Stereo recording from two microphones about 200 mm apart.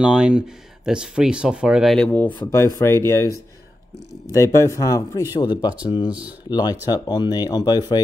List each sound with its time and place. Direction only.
0.0 s speech: 5° right (ahead or behind); by 8.0 s 20° left (ahead or behind)